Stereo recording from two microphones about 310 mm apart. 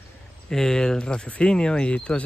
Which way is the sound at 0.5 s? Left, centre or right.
Centre.